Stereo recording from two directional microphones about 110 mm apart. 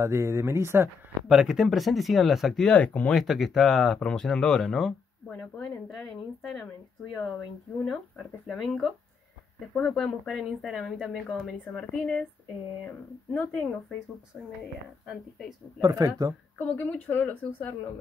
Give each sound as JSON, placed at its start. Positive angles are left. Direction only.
{"t": 0.0, "sound": "speech", "side_deg": -25}
{"t": 1.3, "sound": "speech", "side_deg": -5}
{"t": 3.1, "sound": "speech", "side_deg": 0}
{"t": 8.5, "sound": "speech", "side_deg": 0}
{"t": 11.3, "sound": "speech", "side_deg": -10}
{"t": 11.6, "sound": "a woman's voice", "side_deg": 5}
{"t": 13.5, "sound": "a woman's voice", "side_deg": 5}
{"t": 15.0, "sound": "speech", "side_deg": 0}
{"t": 15.8, "sound": "speech", "side_deg": -35}
{"t": 16.6, "sound": "a woman's voice", "side_deg": 10}